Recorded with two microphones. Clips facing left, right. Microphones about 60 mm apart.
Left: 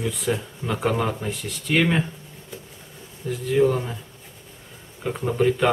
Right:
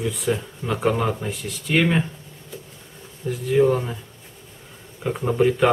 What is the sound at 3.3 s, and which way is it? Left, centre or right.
Speech, centre.